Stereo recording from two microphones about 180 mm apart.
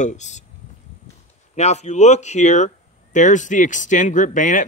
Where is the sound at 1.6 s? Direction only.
40° left (ahead or behind).